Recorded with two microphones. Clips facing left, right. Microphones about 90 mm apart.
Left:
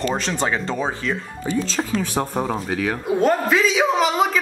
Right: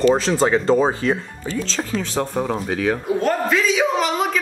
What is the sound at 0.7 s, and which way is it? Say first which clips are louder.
Speech: right 7 dB; 30° right (ahead or behind).